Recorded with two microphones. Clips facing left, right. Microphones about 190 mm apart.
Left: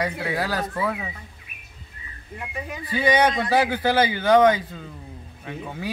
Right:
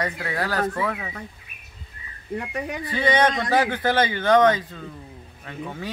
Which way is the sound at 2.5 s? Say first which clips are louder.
Right 4 dB; 75° right (ahead or behind).